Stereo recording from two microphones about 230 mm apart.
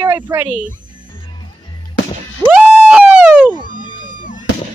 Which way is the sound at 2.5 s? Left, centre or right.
Centre.